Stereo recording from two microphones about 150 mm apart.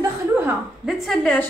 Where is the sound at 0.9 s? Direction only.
Centre (ahead or behind).